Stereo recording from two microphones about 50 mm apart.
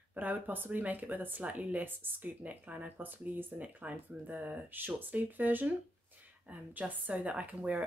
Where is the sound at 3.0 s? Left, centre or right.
Right.